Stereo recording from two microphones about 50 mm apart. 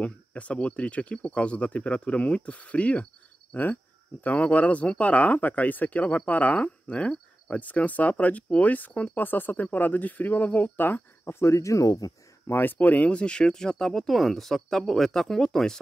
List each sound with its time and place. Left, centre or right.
0.0 s speech: left
3.5 s speech: left
4.2 s speech: left
11.2 s speech: left
12.4 s speech: left
12.7 s speech: left
13.1 s speech: centre